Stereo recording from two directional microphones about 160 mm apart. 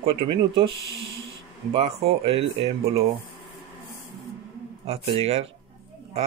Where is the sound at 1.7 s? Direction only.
40° right (ahead or behind).